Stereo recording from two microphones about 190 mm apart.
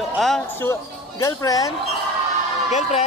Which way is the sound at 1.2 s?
20° left (ahead or behind).